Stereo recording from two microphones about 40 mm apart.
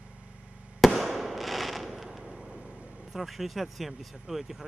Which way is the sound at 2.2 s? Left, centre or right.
Centre.